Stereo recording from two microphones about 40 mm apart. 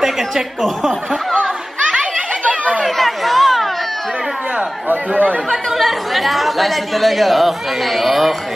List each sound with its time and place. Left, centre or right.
2.4 s chatter: right
2.8 s a sound: centre
4.8 s speech: right
5.8 s speech: centre